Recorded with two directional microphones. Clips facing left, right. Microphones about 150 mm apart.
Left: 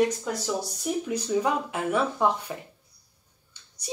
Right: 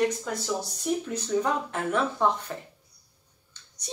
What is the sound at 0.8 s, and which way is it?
Speech, 10° left (ahead or behind).